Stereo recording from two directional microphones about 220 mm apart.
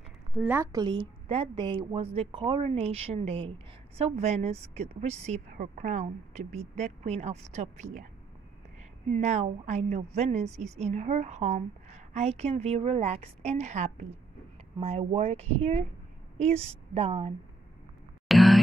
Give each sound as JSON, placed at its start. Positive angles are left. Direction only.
{"t": 0.3, "sound": "speech", "side_deg": -5}
{"t": 9.1, "sound": "a woman's voice", "side_deg": -30}
{"t": 18.3, "sound": "a sound", "side_deg": 0}